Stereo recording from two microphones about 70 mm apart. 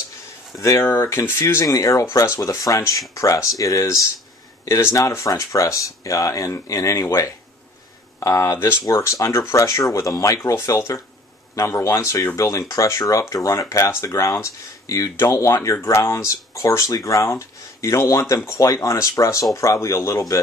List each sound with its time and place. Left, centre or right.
0.6 s speech: left
0.8 s speech: left
1.7 s speech: left
8.8 s speech: left